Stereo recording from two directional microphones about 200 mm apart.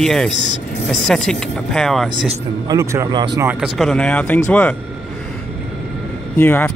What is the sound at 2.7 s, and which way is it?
Speech, 15° right (ahead or behind).